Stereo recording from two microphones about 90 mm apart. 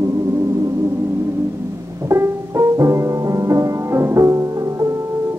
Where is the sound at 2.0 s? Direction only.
35° right (ahead or behind).